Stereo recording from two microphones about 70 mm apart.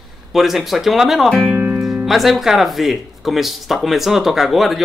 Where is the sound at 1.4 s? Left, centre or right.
Centre.